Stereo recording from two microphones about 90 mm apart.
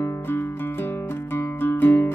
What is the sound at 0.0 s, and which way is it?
Music, 25° left (ahead or behind).